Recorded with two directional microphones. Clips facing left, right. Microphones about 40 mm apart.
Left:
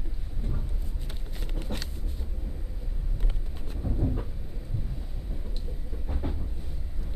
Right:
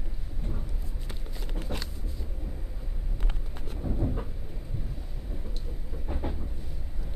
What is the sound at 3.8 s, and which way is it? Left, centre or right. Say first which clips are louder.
Vehicle: left 1 dB; centre.